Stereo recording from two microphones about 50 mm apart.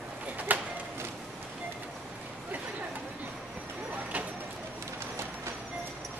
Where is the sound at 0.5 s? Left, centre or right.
Right.